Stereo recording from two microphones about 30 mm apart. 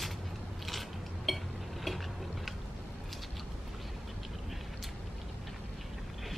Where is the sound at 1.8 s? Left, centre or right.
Centre.